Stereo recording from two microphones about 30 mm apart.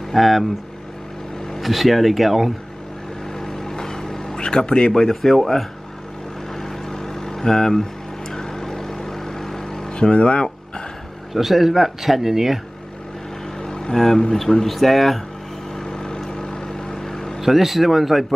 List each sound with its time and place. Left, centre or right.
0.1 s speech: centre
1.6 s speech: centre
3.3 s vehicle: centre
4.4 s speech: left
4.9 s speech: centre
6.5 s vehicle: centre
9.9 s speech: left
11.3 s speech: centre
13.6 s vehicle: left
13.9 s speech: centre
15.7 s vehicle: left
17.4 s speech: centre